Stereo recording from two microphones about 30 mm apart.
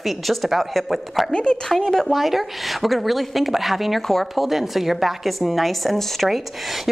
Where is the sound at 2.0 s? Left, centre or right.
Centre.